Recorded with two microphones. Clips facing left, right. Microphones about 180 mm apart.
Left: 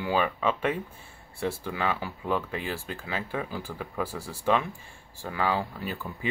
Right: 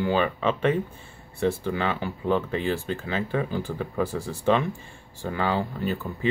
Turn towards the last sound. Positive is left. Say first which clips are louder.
# right 3 dB
turn(degrees=5)  # may be behind; listen again after turning